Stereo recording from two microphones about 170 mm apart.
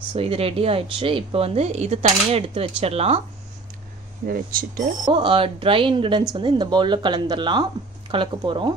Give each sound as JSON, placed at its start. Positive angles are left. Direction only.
{"t": 0.1, "sound": "speech", "side_deg": -35}
{"t": 4.3, "sound": "speech", "side_deg": -55}
{"t": 5.0, "sound": "speech", "side_deg": -30}